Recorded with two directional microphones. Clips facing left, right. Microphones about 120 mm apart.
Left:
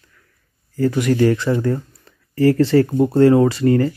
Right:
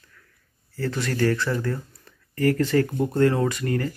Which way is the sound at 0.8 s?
15° left (ahead or behind).